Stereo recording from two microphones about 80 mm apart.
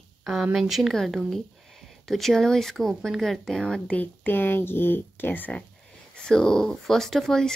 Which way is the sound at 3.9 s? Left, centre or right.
Left.